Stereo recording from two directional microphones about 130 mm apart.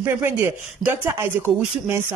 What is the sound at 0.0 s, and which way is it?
Speech, 20° right (ahead or behind).